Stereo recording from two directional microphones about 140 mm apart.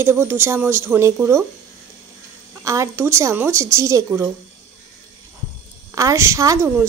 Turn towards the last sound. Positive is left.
turn(degrees=-20)  # may be behind; listen again after turning